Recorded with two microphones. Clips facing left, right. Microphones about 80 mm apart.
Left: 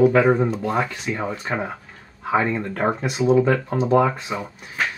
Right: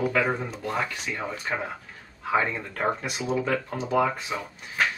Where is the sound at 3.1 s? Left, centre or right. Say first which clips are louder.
Left 10 dB; left.